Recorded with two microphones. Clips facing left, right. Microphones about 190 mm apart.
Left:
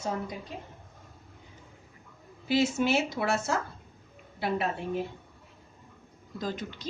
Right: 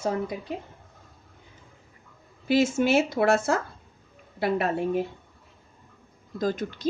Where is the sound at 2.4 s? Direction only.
50° right (ahead or behind).